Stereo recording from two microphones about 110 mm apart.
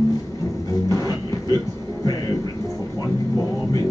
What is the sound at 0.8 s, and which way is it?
Music, 30° left (ahead or behind).